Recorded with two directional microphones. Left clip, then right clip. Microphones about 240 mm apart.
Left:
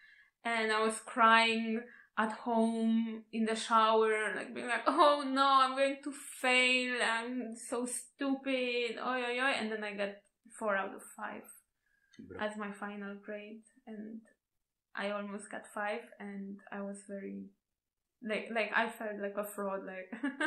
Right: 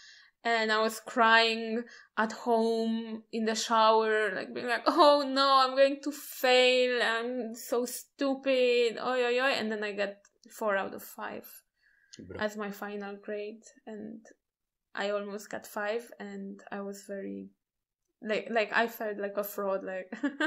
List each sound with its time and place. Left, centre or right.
0.4 s speech: right